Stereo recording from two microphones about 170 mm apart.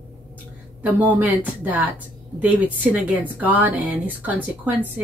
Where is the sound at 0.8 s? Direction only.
10° right (ahead or behind).